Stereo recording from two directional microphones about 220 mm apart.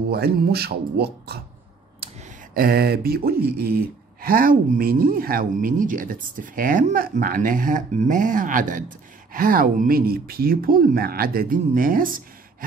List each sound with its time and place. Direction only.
0.1 s speech: 45° right (ahead or behind)
2.5 s speech: 45° right (ahead or behind)